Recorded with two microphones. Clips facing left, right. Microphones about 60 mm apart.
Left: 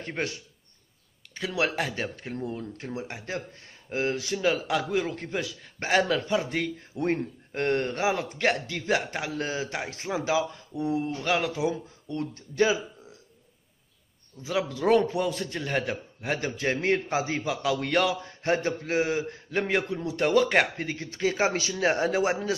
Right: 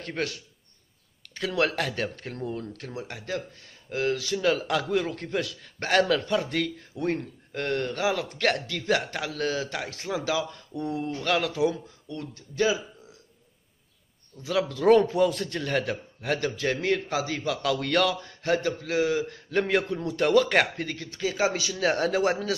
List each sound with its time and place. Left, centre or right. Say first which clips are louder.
0.0 s a man's voice: right 1 dB; left
1.3 s a man's voice: right 2 dB; centre; by 4.4 s left
4.4 s a man's voice: even; centre
7.0 s a man's voice: left 1 dB; left
8.3 s a man's voice: even; centre
12.1 s speech: left 4 dB; left
14.4 s a man's voice: right 3 dB; centre
16.5 s a man's voice: even; left
18.4 s a man's voice: right 1 dB; left
19.5 s a man's voice: right 2 dB; centre; by 21.9 s left
21.9 s a man's voice: right 1 dB; centre